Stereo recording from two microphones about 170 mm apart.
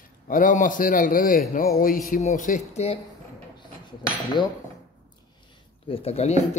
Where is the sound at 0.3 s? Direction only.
50° left (ahead or behind).